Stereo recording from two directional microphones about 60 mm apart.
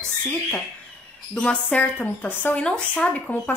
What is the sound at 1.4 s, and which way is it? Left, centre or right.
Speech, left.